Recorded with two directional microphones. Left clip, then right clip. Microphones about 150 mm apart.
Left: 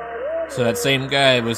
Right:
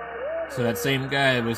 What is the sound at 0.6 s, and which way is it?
Speech, 35° left (ahead or behind).